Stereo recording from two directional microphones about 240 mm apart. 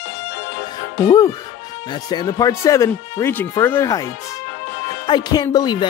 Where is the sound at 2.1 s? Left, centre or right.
Centre.